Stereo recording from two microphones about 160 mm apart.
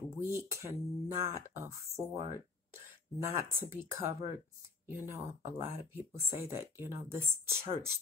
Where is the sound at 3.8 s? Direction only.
15° right (ahead or behind).